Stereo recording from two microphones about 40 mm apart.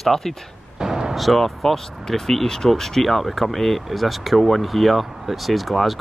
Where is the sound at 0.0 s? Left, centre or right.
Centre.